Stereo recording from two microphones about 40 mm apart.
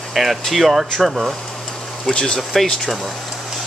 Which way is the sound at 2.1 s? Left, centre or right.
Centre.